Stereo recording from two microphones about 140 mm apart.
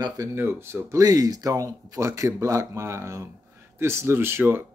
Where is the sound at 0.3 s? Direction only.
15° right (ahead or behind).